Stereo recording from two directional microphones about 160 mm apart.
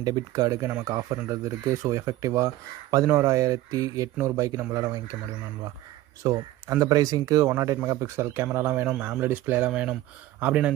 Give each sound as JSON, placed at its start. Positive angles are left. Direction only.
{"t": 0.0, "sound": "speech", "side_deg": -25}
{"t": 6.2, "sound": "speech", "side_deg": -20}